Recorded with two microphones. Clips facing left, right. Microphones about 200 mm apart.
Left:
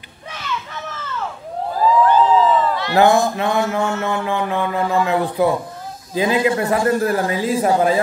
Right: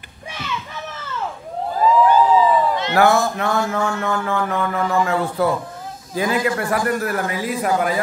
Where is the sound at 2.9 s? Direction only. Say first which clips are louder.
Left 3 dB; 20° left (ahead or behind).